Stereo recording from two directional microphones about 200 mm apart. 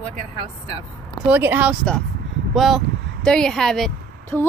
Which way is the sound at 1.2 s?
10° right (ahead or behind).